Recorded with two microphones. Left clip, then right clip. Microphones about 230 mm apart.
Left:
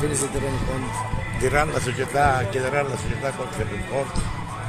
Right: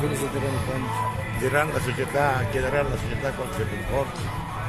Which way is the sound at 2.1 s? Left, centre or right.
Left.